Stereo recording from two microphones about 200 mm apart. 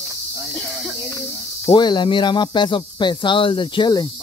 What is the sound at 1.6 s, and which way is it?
Speech, 20° left (ahead or behind).